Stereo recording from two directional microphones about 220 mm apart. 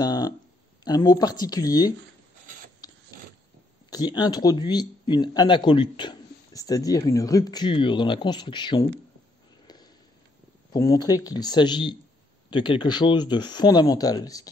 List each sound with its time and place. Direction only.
0.0 s a sound: 20° left (ahead or behind)
0.8 s speech: 15° left (ahead or behind)
2.8 s mechanisms: 20° left (ahead or behind)
3.9 s speech: 20° left (ahead or behind)
10.7 s speech: 15° left (ahead or behind)